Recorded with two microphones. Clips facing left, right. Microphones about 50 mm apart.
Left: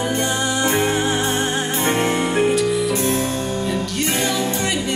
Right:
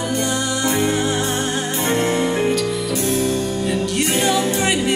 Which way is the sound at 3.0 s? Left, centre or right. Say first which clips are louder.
Right 1 dB; left.